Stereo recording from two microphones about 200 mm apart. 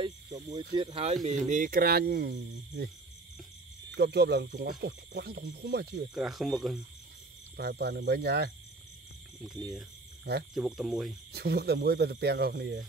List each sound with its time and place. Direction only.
0.0 s cricket: 30° right (ahead or behind)
0.7 s speech: 30° right (ahead or behind); by 2.3 s 50° right (ahead or behind)
3.9 s speech: 55° right (ahead or behind)
6.1 s speech: centre (ahead or behind)
7.5 s speech: 55° right (ahead or behind)
10.5 s speech: centre (ahead or behind)
11.3 s speech: 55° right (ahead or behind)